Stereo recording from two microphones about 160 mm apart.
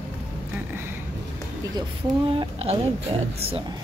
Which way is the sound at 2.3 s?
40° right (ahead or behind).